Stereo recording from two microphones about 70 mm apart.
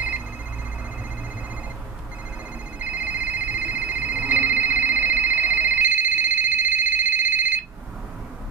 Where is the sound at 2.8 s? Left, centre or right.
Right.